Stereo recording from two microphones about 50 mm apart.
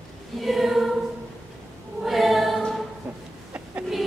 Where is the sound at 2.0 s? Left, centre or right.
Centre.